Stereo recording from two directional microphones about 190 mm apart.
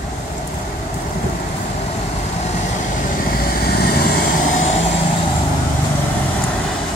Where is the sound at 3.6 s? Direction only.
55° left (ahead or behind).